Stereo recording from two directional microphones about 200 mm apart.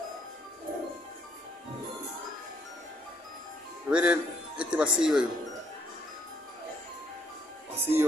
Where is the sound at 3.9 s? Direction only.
5° right (ahead or behind).